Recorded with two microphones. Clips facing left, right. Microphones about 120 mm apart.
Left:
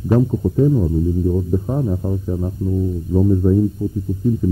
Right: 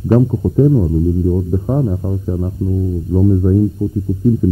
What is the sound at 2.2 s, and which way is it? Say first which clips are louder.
Speech: right 2 dB; 20° right (ahead or behind).